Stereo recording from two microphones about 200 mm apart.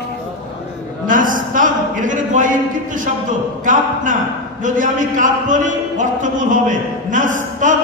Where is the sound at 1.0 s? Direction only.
40° right (ahead or behind).